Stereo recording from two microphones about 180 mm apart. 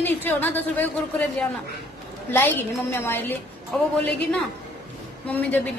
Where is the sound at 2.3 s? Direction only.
10° left (ahead or behind).